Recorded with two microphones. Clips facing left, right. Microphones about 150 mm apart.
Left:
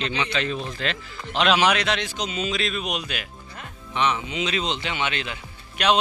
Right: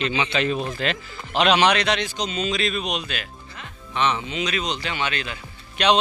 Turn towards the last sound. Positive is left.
turn(degrees=5)  # may be behind; listen again after turning